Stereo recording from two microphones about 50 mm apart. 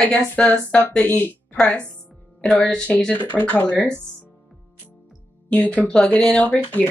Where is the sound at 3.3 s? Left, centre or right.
Centre.